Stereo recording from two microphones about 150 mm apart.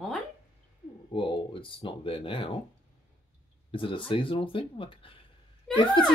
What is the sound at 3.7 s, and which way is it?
Speech, 35° left (ahead or behind).